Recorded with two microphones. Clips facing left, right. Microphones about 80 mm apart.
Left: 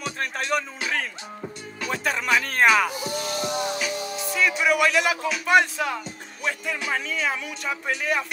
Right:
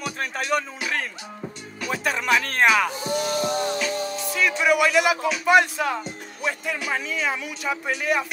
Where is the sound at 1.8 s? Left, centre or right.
Centre.